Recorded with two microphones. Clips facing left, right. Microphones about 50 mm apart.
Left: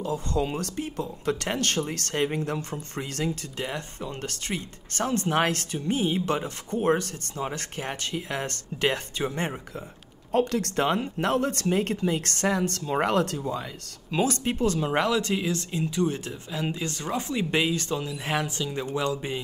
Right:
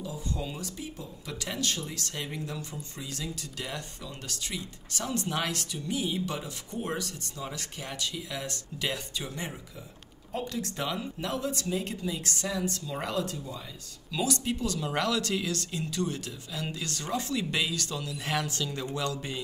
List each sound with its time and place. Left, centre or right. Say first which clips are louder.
0.0 s speech: left 8 dB; left
3.5 s speech: left 5 dB; left
10.3 s speech: left 10 dB; left
14.1 s speech: left 5 dB; left